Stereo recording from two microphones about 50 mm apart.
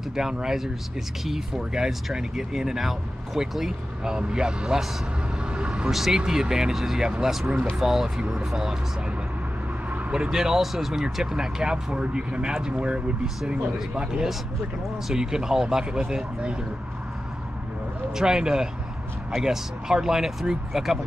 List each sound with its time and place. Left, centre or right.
0.1 s speech: centre
5.5 s vehicle: right
5.9 s speech: centre
9.8 s vehicle: right
10.1 s speech: centre
18.1 s speech: centre